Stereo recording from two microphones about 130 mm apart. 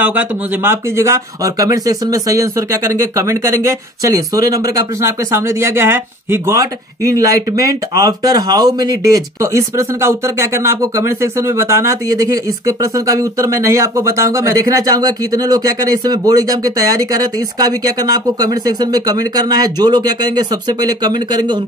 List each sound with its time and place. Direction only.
0.0 s speech: 15° right (ahead or behind); by 21.5 s 35° right (ahead or behind)